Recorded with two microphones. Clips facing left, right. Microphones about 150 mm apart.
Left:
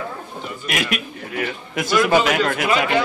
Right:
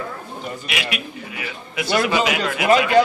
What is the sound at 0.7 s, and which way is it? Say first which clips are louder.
A man's voice: left 7 dB; 45° left (ahead or behind).